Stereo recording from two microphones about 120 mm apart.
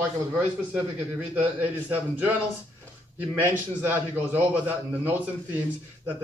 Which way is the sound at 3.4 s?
15° right (ahead or behind).